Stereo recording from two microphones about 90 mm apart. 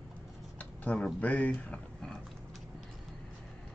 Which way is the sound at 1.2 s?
15° left (ahead or behind).